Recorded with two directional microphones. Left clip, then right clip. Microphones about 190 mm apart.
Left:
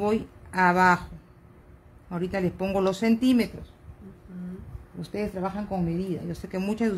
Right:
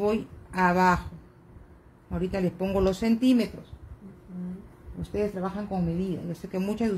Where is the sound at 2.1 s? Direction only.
35° left (ahead or behind).